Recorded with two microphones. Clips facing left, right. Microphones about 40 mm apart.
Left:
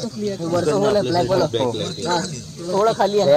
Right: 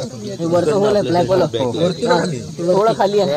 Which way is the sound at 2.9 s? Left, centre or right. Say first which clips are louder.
Right 3 dB; centre.